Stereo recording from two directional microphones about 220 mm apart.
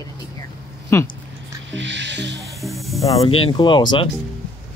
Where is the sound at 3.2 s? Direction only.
25° left (ahead or behind).